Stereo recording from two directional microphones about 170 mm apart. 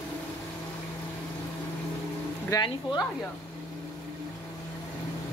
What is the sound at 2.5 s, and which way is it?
Speech, 25° left (ahead or behind).